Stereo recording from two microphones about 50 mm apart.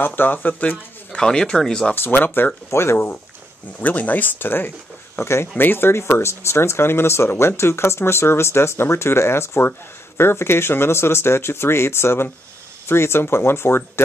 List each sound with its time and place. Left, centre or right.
0.0 s speech: left
1.1 s speech: centre
2.0 s speech: left
2.7 s speech: left
3.8 s speech: left
5.2 s speech: left
5.6 s speech: left